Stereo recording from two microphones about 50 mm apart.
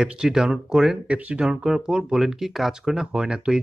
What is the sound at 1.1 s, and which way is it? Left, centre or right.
Speech, right.